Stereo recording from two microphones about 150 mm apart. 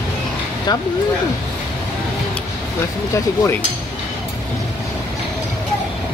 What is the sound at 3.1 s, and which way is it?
Speech, 15° left (ahead or behind).